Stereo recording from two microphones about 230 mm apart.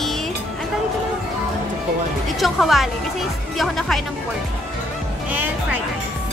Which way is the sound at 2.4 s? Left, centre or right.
Centre.